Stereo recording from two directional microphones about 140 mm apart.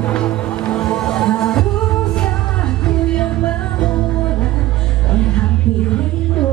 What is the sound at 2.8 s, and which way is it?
Music, 5° left (ahead or behind).